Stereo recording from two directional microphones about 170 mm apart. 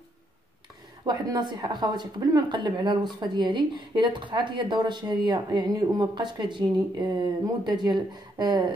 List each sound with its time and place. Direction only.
1.0 s speech: 25° right (ahead or behind)